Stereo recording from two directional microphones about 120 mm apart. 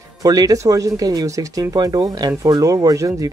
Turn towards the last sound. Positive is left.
turn(degrees=-30)  # may be behind; listen again after turning